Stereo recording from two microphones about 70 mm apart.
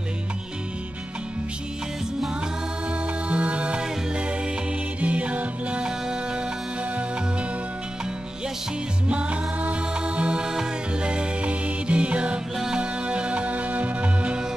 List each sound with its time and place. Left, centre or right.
3.3 s music: centre
5.0 s music: centre
9.1 s music: centre